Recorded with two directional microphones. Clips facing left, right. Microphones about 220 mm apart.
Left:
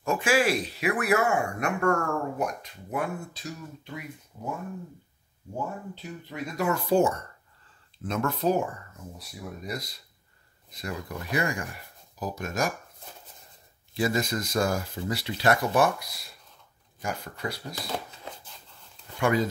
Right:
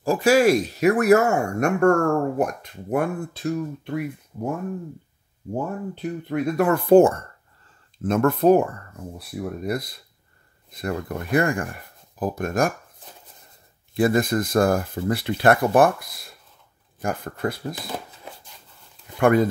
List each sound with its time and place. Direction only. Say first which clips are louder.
0.0 s speech: right 7 dB; 35° right (ahead or behind); by 4.1 s 60° right (ahead or behind)
5.5 s speech: right 7 dB; 55° right (ahead or behind)
13.9 s speech: right 7 dB; 55° right (ahead or behind)
17.7 s shuffling cards: right 1 dB; centre (ahead or behind)
19.1 s speech: right 7 dB; 55° right (ahead or behind)